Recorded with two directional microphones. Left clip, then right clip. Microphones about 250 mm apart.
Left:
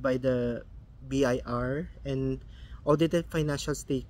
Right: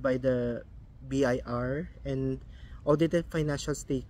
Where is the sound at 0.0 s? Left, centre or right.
Centre.